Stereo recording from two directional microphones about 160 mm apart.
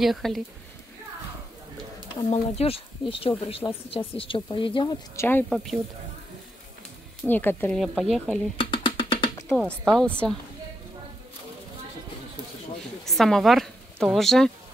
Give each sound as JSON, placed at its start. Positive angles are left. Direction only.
{"t": 0.0, "sound": "speech", "side_deg": 0}
{"t": 2.3, "sound": "speech", "side_deg": 40}
{"t": 5.1, "sound": "speech", "side_deg": 15}
{"t": 5.5, "sound": "speech", "side_deg": 0}
{"t": 7.2, "sound": "speech", "side_deg": 10}
{"t": 7.7, "sound": "speech", "side_deg": 0}
{"t": 8.5, "sound": "a sound", "side_deg": 30}
{"t": 9.5, "sound": "speech", "side_deg": 5}
{"t": 13.0, "sound": "speech", "side_deg": 0}